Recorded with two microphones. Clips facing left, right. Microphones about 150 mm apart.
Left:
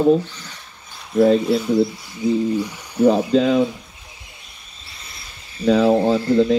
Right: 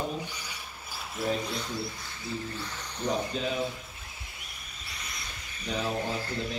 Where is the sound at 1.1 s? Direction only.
70° left (ahead or behind).